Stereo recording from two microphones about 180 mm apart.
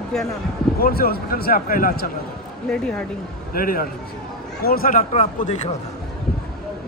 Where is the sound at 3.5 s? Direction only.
55° left (ahead or behind).